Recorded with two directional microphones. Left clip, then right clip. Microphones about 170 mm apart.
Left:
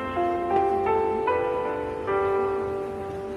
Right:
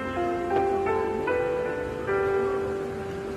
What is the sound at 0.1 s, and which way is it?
Music, 35° left (ahead or behind).